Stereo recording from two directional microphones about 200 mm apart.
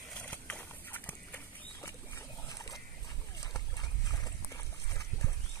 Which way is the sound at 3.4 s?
20° left (ahead or behind).